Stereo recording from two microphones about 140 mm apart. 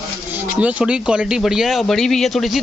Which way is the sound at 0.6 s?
10° right (ahead or behind).